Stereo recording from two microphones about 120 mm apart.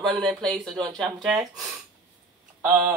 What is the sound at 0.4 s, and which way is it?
Speech, 5° left (ahead or behind).